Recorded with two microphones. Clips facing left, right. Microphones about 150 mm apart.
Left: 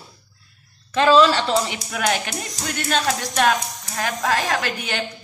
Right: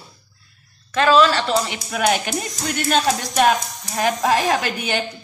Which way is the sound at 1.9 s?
5° right (ahead or behind).